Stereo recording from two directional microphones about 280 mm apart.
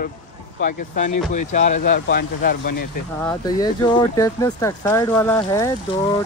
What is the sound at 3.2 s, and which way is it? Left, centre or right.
Speech, centre.